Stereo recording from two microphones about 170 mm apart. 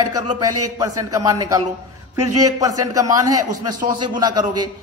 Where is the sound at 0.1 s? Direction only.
20° right (ahead or behind).